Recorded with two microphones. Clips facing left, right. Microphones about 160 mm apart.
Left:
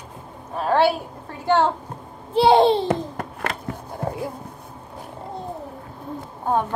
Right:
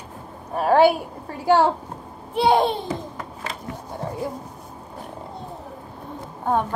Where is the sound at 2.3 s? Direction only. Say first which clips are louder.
Left 4 dB; 30° left (ahead or behind).